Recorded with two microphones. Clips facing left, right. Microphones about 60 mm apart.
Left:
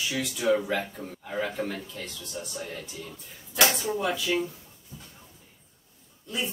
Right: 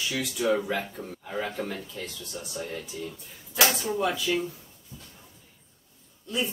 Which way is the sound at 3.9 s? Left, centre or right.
Centre.